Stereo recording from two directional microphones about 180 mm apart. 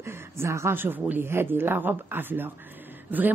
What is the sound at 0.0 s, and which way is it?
Speech, 15° right (ahead or behind).